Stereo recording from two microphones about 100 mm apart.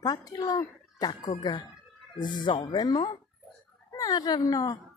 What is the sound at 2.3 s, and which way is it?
Speech, 55° left (ahead or behind).